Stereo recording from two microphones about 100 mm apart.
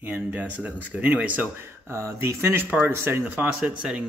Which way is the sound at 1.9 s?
25° right (ahead or behind).